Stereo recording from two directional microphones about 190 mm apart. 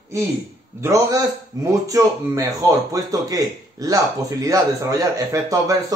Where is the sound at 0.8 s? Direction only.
15° right (ahead or behind).